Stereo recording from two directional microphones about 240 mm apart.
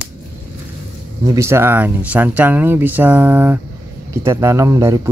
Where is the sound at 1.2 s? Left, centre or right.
Centre.